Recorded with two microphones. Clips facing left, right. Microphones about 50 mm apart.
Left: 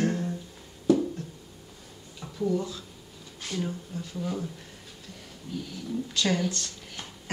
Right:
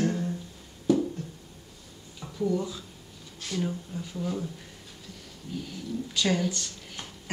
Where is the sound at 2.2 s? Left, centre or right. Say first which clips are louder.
Even; centre.